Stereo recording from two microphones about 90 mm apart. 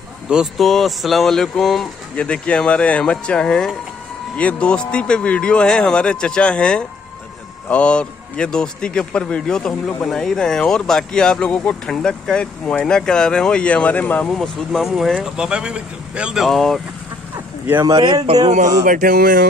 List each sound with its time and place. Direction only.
0.3 s speech: 10° right (ahead or behind); by 14.3 s 15° left (ahead or behind)
14.3 s speech: centre (ahead or behind)
16.4 s speech: centre (ahead or behind)
17.8 s speech: 50° right (ahead or behind)